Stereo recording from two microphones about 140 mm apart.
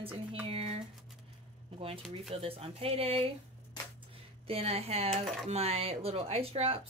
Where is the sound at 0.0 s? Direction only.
40° right (ahead or behind).